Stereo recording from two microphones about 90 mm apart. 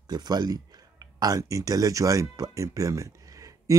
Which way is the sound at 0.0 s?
50° right (ahead or behind).